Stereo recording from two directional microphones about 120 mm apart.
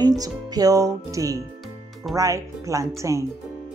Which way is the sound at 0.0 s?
30° right (ahead or behind).